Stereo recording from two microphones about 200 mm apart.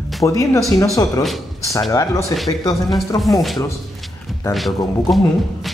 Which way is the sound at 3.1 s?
15° left (ahead or behind).